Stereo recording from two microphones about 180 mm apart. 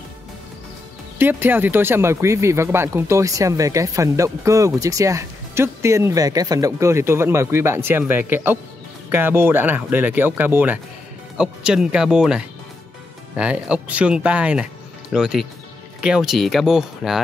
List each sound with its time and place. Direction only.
1.1 s speech: 10° right (ahead or behind)